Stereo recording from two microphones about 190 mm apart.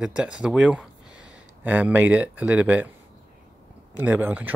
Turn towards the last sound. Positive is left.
turn(degrees=-10)  # may be behind; listen again after turning